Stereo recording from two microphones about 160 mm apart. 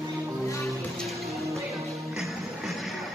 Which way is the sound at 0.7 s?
Centre (ahead or behind).